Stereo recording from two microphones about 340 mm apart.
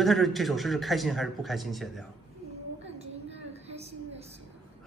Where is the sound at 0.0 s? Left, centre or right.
Centre.